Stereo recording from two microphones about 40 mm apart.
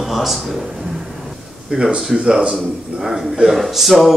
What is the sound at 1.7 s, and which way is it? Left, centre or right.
A man's voice, right.